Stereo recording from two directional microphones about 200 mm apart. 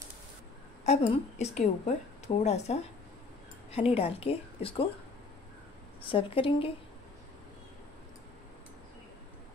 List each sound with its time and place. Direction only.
0.8 s a woman's voice: 30° left (ahead or behind)
6.0 s a woman's voice: 25° left (ahead or behind)